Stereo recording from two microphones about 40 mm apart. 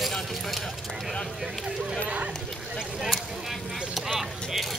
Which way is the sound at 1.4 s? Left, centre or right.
Centre.